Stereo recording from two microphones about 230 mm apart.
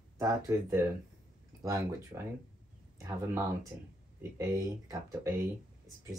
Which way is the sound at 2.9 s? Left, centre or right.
Centre.